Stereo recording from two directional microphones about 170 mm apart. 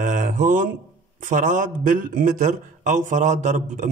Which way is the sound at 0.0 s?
50° right (ahead or behind).